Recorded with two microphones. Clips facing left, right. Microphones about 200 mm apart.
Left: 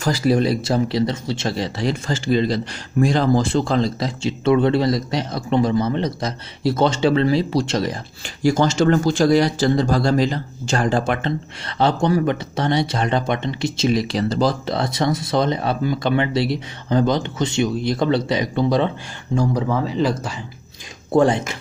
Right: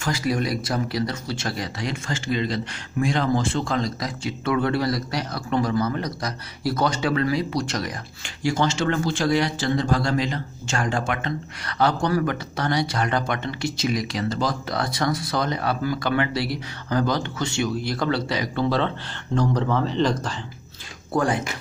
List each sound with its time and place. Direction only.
0.0 s speech: 35° left (ahead or behind)
8.4 s speech: 40° left (ahead or behind); by 20.3 s 5° left (ahead or behind)
21.1 s speech: 25° left (ahead or behind)